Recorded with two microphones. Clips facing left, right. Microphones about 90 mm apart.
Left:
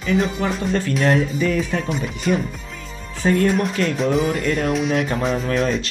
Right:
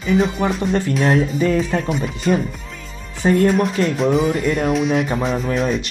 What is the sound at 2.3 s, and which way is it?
Speech, 30° right (ahead or behind).